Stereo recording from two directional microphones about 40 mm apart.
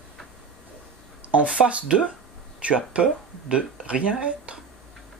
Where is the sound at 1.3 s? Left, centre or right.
Right.